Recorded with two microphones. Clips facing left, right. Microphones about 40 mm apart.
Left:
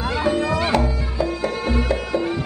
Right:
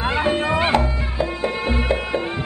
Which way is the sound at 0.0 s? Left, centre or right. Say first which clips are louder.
Right 1 dB; right.